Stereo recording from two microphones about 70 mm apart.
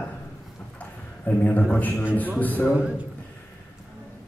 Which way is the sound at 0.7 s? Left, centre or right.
Left.